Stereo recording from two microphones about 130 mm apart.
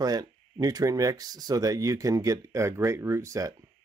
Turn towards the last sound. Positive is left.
turn(degrees=-25)  # may be behind; listen again after turning